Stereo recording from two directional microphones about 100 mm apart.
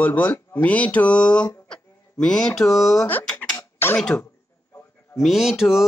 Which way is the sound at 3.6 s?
20° left (ahead or behind).